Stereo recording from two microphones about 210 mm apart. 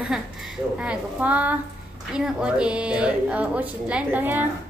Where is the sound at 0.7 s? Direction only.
5° right (ahead or behind).